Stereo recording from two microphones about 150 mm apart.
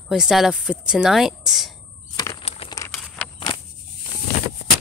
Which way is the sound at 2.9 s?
5° left (ahead or behind).